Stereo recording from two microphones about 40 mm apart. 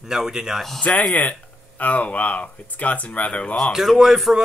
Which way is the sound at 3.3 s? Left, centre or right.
Left.